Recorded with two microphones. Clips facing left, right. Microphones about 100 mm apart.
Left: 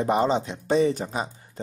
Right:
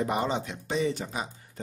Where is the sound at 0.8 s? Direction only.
40° left (ahead or behind).